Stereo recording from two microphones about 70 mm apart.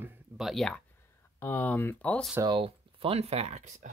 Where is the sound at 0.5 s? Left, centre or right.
Centre.